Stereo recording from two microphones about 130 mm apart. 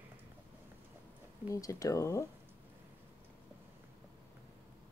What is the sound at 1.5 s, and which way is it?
Speech, 25° left (ahead or behind).